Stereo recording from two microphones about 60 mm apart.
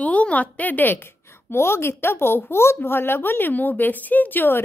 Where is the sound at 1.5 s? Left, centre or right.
Left.